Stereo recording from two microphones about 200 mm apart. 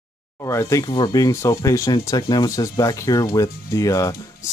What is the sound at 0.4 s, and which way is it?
Speech, 15° left (ahead or behind).